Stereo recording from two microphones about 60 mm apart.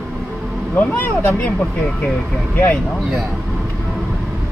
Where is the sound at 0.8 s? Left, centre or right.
Left.